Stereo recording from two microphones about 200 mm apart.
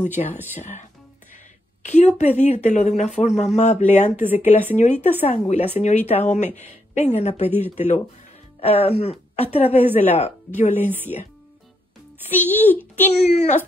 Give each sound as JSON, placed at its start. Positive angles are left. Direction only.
{"t": 0.0, "sound": "a woman's voice", "side_deg": 35}
{"t": 4.5, "sound": "speech", "side_deg": -10}
{"t": 4.7, "sound": "a woman's voice", "side_deg": 35}
{"t": 7.4, "sound": "speech", "side_deg": -10}
{"t": 7.7, "sound": "a woman's voice", "side_deg": 35}
{"t": 10.7, "sound": "speech", "side_deg": -10}
{"t": 12.3, "sound": "speech", "side_deg": 10}
{"t": 12.9, "sound": "a woman's voice", "side_deg": 35}